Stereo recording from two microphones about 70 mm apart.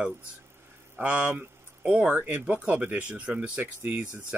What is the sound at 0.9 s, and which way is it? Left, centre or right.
Speech, right.